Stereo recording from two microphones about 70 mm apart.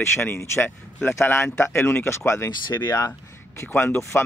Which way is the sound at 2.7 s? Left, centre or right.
Left.